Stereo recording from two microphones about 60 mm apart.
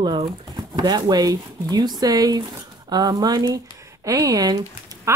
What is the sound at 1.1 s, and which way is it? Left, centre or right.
Speech, right.